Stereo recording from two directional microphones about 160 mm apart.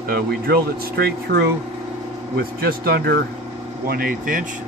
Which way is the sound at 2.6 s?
75° right (ahead or behind).